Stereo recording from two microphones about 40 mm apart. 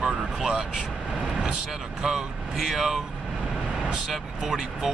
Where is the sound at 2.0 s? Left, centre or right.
Centre.